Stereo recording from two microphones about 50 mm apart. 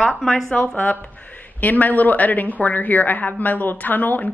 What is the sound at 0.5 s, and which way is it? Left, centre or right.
Speech, left.